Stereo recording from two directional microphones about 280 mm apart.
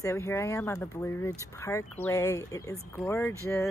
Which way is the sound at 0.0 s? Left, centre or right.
Centre.